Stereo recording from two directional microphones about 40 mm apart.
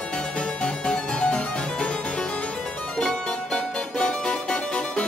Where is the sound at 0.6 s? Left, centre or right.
Left.